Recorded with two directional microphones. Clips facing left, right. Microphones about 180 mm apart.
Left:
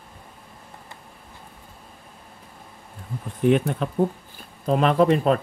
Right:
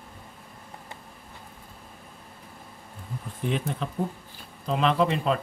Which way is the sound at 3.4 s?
60° left (ahead or behind).